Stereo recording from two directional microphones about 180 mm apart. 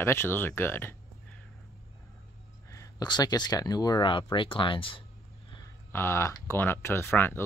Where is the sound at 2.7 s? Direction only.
20° left (ahead or behind).